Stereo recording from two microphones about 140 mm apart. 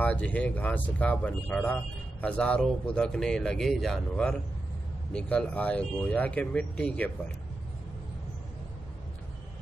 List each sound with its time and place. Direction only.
0.0 s speech: 10° left (ahead or behind)